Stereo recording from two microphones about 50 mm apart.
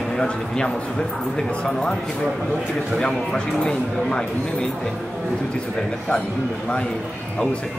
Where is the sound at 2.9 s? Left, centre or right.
Centre.